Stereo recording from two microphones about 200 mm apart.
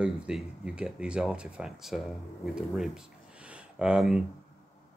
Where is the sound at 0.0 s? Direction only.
5° right (ahead or behind).